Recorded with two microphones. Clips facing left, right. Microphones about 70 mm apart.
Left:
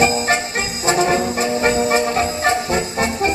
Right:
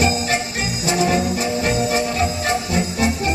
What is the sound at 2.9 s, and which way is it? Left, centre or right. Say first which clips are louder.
Music: left 1 dB; left.